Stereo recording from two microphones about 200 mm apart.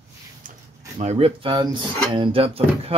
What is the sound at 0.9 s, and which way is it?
Speech, 35° right (ahead or behind).